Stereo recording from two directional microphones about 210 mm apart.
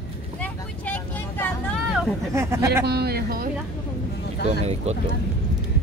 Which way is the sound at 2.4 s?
15° right (ahead or behind).